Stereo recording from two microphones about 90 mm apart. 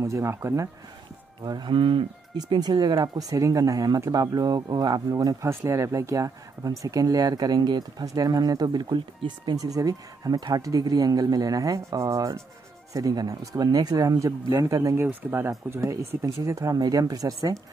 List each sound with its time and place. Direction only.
0.0 s speech: 35° right (ahead or behind)
1.4 s speech: 55° right (ahead or behind); by 2.0 s 70° right (ahead or behind)
2.3 s speech: 50° right (ahead or behind)
3.3 s speech: 40° right (ahead or behind)
5.5 s speech: 25° right (ahead or behind)
15.2 s speech: 20° right (ahead or behind); by 17.6 s 40° right (ahead or behind)